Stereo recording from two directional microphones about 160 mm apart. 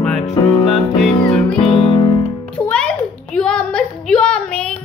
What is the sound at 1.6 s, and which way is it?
Music, 30° left (ahead or behind).